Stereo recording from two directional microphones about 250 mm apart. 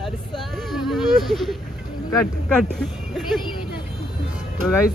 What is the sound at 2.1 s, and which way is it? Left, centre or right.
Speech, centre.